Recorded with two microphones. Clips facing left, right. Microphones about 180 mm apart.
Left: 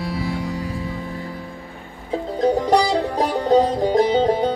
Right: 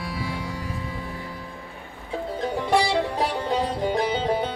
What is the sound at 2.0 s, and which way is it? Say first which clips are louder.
Music: left 8 dB; 40° left (ahead or behind).